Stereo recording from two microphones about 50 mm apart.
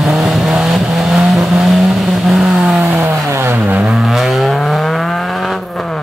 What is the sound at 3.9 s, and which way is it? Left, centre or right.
Vehicle, centre.